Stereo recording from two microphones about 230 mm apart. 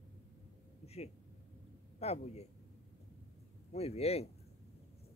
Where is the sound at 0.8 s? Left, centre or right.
Left.